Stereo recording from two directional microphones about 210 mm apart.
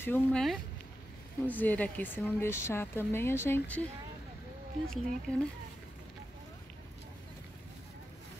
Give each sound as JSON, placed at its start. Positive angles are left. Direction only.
{"t": 0.0, "sound": "speech", "side_deg": 5}